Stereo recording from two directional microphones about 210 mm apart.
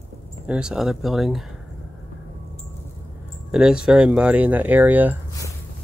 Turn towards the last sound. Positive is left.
turn(degrees=-10)  # may be behind; listen again after turning